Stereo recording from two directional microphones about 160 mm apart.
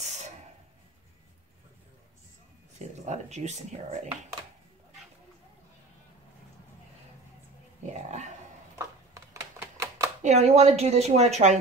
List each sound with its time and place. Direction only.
3.1 s a woman's voice: 45° right (ahead or behind)
7.8 s dog: 45° right (ahead or behind)
8.7 s typewriter: 20° right (ahead or behind)
10.2 s a woman's voice: 45° right (ahead or behind)